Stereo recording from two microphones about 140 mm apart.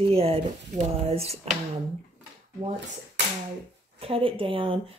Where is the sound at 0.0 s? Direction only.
45° right (ahead or behind).